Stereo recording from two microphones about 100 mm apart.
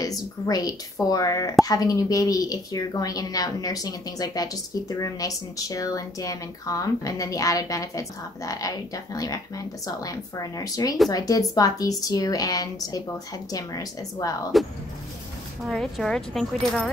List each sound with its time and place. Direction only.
0.0 s a woman's voice: 40° left (ahead or behind)
14.5 s speech: centre (ahead or behind)